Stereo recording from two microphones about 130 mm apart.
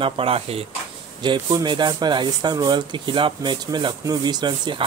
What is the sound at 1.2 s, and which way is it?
Speech, 35° right (ahead or behind).